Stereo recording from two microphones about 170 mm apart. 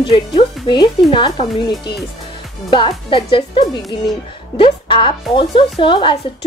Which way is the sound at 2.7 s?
30° left (ahead or behind).